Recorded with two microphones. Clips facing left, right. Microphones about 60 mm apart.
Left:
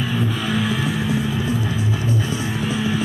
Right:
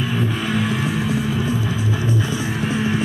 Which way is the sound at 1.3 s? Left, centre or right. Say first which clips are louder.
Right 1 dB; centre.